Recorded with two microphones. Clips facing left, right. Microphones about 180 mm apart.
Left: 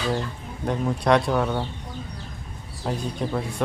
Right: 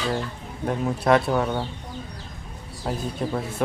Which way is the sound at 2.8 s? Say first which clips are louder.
Even; centre (ahead or behind).